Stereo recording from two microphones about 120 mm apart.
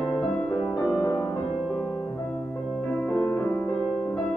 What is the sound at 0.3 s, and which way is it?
Music, 5° left (ahead or behind).